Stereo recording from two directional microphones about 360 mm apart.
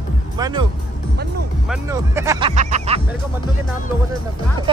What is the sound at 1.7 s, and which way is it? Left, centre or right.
Music, centre.